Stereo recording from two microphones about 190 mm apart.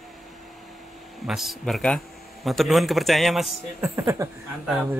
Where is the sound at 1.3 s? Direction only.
Centre (ahead or behind).